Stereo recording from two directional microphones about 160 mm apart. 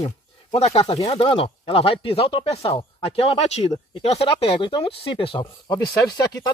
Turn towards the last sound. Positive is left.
turn(degrees=25)  # may be behind; listen again after turning